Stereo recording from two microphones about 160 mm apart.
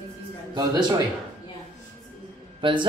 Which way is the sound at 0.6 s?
25° right (ahead or behind).